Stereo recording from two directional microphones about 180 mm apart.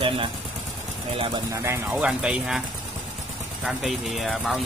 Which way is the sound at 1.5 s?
15° right (ahead or behind).